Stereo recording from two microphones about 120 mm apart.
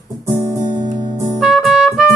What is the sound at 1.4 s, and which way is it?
Trumpet, 5° right (ahead or behind).